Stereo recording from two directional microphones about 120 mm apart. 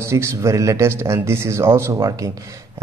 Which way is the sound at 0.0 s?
25° right (ahead or behind).